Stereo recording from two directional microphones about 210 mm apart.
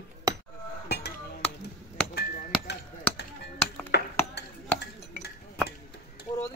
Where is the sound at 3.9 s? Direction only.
50° left (ahead or behind).